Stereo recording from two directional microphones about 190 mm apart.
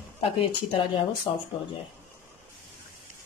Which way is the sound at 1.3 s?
25° left (ahead or behind).